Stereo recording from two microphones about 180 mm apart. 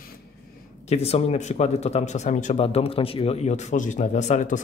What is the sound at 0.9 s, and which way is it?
Speech, 35° left (ahead or behind).